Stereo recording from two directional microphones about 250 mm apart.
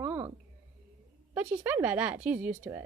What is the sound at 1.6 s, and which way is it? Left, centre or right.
A woman's voice, centre.